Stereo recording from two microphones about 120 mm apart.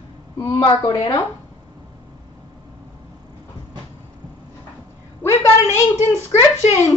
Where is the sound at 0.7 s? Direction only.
40° left (ahead or behind).